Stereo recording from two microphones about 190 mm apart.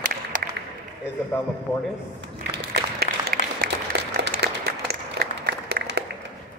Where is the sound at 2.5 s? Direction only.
55° right (ahead or behind).